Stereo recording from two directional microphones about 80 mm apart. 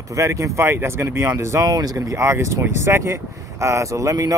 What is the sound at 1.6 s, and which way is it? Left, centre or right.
Speech, right.